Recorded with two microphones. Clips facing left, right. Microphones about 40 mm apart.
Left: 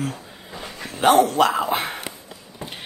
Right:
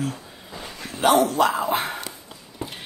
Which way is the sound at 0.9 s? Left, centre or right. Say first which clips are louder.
Left 2 dB; left.